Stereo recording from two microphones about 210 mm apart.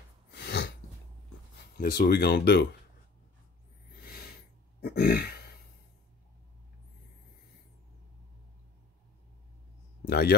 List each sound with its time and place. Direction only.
0.3 s sneeze: 50° left (ahead or behind)
1.8 s speech: 50° left (ahead or behind)
3.9 s a sound: 45° left (ahead or behind)
4.8 s speech: 50° left (ahead or behind)
10.0 s speech: 50° left (ahead or behind)